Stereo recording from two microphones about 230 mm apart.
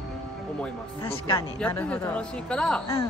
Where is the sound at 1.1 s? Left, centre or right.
Left.